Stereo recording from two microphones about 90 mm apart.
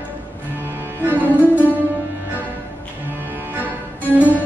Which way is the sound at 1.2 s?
20° right (ahead or behind).